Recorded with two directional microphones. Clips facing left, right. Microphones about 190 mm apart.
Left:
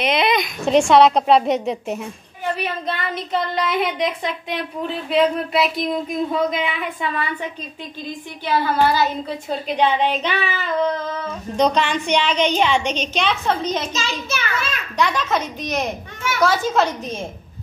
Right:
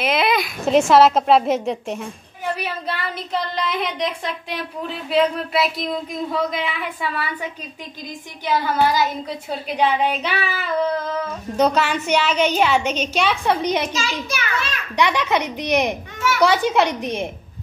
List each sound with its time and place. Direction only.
0.0 s speech: 5° right (ahead or behind)
2.5 s a woman's voice: 10° right (ahead or behind)
3.3 s speech: centre (ahead or behind)
8.7 s a woman's voice: 15° right (ahead or behind)